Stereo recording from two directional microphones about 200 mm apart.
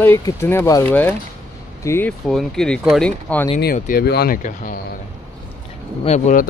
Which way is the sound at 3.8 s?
45° left (ahead or behind).